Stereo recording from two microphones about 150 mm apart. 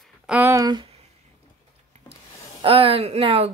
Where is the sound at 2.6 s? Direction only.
40° right (ahead or behind).